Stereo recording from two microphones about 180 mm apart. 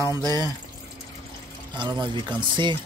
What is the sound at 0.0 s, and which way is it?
Speech, 20° right (ahead or behind).